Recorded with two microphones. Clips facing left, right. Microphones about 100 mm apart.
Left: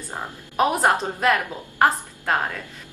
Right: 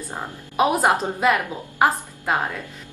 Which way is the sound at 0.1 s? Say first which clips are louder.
Right 1 dB; 10° right (ahead or behind).